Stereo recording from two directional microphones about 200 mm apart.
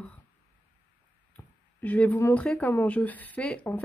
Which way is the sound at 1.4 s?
10° left (ahead or behind).